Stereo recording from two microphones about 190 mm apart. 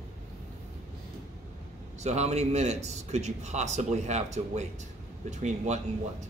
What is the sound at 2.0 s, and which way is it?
Speech, 35° right (ahead or behind).